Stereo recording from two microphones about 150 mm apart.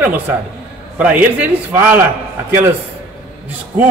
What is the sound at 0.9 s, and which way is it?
A man's voice, 10° right (ahead or behind).